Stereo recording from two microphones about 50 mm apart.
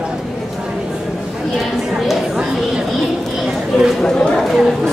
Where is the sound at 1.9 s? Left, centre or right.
Centre.